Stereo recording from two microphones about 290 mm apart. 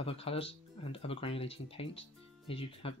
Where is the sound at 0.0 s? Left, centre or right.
Centre.